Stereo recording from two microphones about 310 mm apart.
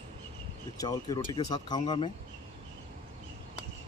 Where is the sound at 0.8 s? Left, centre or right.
Centre.